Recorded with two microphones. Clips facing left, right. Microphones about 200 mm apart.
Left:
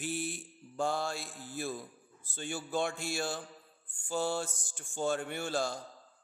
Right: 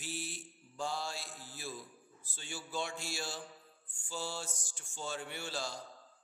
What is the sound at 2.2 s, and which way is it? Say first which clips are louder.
Speech: left 8 dB; 55° left (ahead or behind).